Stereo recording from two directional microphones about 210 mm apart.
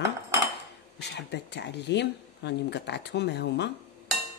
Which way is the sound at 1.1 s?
55° left (ahead or behind).